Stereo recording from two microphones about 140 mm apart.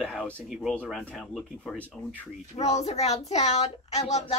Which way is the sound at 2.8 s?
50° left (ahead or behind).